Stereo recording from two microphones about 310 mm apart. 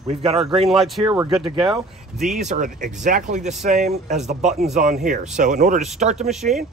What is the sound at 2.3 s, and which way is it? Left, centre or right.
Speech, right.